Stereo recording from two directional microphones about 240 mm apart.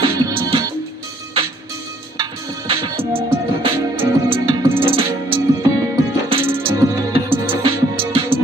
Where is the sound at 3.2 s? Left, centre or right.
Right.